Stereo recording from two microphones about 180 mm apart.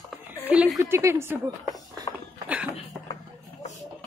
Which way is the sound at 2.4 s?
10° right (ahead or behind).